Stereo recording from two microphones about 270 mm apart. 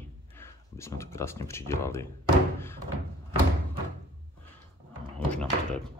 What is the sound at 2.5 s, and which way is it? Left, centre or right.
Thunk, centre.